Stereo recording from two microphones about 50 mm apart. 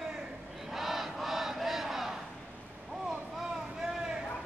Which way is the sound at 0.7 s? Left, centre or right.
Centre.